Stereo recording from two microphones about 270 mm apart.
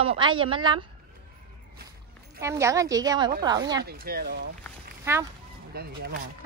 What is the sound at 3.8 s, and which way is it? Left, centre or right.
Speech, right.